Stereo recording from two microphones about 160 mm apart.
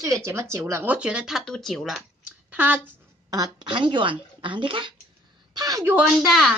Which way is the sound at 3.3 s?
25° right (ahead or behind).